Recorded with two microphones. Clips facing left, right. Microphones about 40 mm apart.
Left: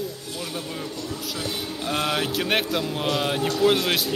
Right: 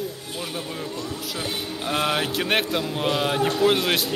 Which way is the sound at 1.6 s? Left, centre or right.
Centre.